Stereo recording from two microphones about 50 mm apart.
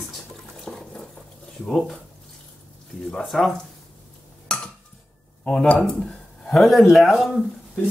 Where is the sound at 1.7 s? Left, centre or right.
Centre.